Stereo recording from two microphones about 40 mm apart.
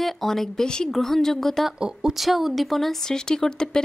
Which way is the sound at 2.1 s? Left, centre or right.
Centre.